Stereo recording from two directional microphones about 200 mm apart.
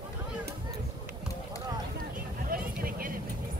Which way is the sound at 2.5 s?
45° right (ahead or behind).